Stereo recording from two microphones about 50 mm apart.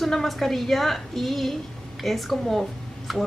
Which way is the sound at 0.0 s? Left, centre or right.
Centre.